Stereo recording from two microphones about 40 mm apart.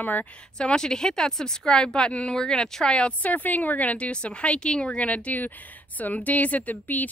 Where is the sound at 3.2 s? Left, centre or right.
Left.